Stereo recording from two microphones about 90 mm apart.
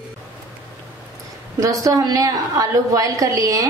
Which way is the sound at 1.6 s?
40° right (ahead or behind).